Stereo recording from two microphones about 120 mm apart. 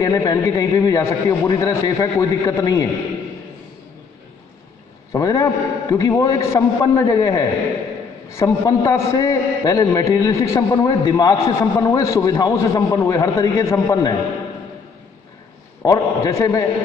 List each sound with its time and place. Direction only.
0.0 s a man's voice: 30° left (ahead or behind)
5.1 s a man's voice: 30° left (ahead or behind)
15.8 s a man's voice: 25° left (ahead or behind)